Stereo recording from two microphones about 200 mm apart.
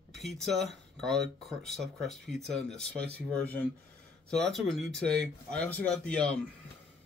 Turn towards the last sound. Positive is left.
turn(degrees=5)  # may be behind; listen again after turning